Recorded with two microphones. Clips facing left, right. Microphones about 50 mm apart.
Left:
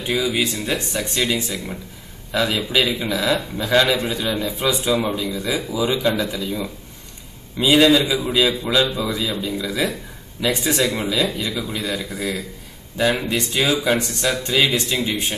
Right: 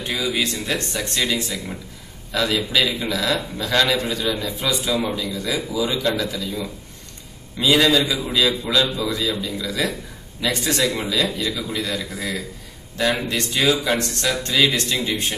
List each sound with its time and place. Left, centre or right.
0.0 s a man's voice: centre